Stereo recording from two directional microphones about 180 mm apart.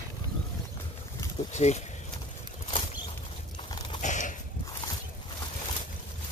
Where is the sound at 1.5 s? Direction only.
40° left (ahead or behind).